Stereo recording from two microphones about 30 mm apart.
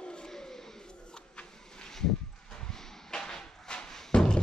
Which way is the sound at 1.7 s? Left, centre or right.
Left.